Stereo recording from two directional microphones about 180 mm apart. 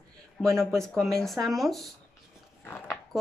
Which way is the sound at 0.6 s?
Centre (ahead or behind).